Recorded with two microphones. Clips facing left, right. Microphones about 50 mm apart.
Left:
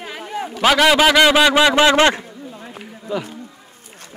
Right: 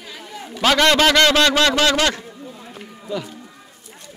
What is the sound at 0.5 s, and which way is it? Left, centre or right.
A man's voice, centre.